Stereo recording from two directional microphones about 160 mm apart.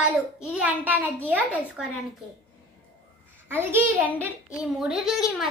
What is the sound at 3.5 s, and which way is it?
Speech, 15° right (ahead or behind).